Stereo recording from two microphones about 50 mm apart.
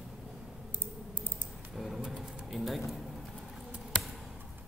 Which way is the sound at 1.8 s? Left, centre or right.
Centre.